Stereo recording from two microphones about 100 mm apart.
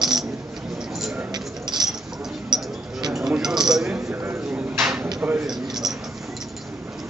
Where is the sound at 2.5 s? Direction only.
45° right (ahead or behind).